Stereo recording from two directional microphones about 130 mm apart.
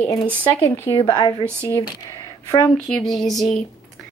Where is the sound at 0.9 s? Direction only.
35° left (ahead or behind).